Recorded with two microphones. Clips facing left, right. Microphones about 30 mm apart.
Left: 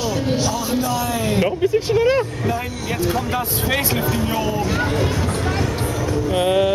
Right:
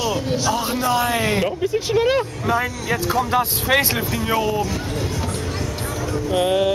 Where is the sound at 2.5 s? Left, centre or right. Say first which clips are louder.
Right 3 dB; right.